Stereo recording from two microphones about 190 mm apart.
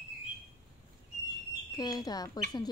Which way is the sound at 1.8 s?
20° left (ahead or behind).